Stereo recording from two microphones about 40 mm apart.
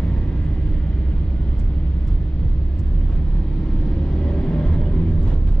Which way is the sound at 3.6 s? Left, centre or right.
Left.